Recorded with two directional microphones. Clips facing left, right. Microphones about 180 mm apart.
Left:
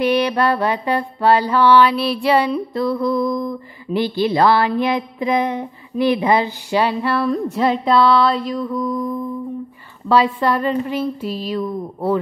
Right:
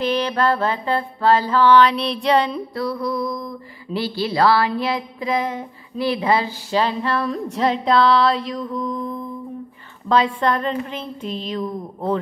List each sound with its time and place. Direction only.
0.0 s speech: 15° left (ahead or behind)
2.7 s mantra: 25° left (ahead or behind)
3.9 s speech: 20° left (ahead or behind)
10.0 s a woman's voice: 5° left (ahead or behind)